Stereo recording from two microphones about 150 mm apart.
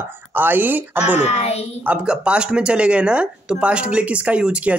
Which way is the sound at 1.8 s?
5° right (ahead or behind).